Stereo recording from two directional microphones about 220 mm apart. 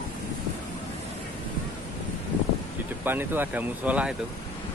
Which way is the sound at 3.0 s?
10° right (ahead or behind).